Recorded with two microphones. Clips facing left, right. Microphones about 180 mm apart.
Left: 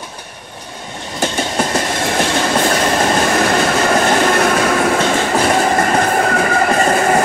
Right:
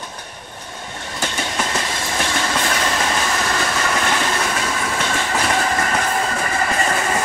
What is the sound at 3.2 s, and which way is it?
Train, 55° left (ahead or behind).